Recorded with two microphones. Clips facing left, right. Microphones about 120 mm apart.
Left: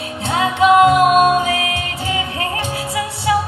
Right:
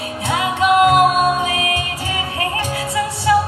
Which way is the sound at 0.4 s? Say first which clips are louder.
Left 3 dB; 25° left (ahead or behind).